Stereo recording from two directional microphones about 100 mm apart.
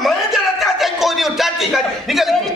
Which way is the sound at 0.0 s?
Centre (ahead or behind).